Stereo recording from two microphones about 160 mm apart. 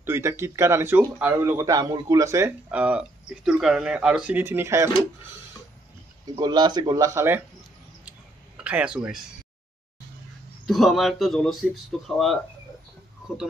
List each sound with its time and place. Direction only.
0.0 s speech: 15° right (ahead or behind)
6.3 s speech: 25° right (ahead or behind)
7.2 s speech: 15° right (ahead or behind)
8.5 s speech: 5° right (ahead or behind)
10.7 s speech: centre (ahead or behind)